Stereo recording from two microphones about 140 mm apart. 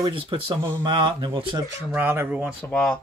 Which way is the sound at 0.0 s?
35° right (ahead or behind).